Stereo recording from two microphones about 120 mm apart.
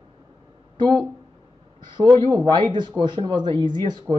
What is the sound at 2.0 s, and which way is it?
Speech, 40° right (ahead or behind).